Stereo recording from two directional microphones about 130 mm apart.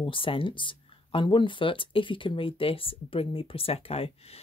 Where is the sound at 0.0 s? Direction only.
45° left (ahead or behind).